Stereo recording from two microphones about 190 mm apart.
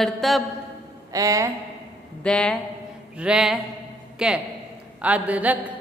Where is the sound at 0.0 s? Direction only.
Centre (ahead or behind).